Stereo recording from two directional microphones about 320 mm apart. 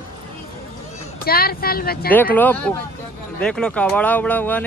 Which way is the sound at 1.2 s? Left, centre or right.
Left.